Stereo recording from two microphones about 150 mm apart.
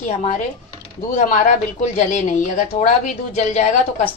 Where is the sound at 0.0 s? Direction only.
50° left (ahead or behind).